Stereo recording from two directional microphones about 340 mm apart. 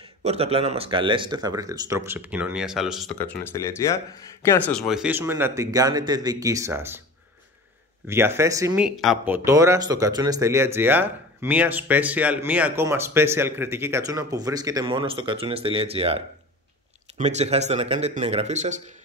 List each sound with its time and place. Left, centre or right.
0.2 s speech: centre
8.1 s speech: centre
17.2 s speech: centre